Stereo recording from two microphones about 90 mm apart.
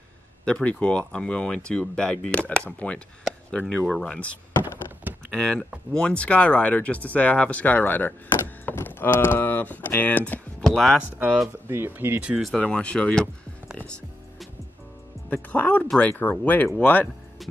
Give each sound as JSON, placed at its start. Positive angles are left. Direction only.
{"t": 0.5, "sound": "speech", "side_deg": 10}
{"t": 10.6, "sound": "speech", "side_deg": 5}
{"t": 11.4, "sound": "speech", "side_deg": -25}
{"t": 12.4, "sound": "speech", "side_deg": 0}
{"t": 12.6, "sound": "speech", "side_deg": 10}
{"t": 15.2, "sound": "speech", "side_deg": 20}